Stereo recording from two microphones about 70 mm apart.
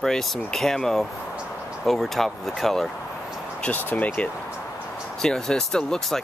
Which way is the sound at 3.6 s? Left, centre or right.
Left.